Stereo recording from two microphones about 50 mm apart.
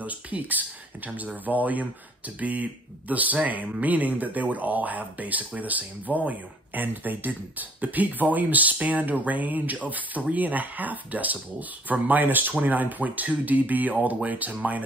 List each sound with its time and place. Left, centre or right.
0.0 s speech: right